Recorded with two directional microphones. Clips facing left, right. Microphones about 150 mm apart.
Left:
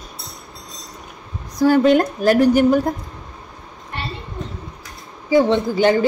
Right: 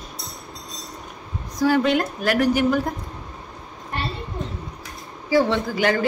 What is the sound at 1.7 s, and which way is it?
Speech, 45° left (ahead or behind).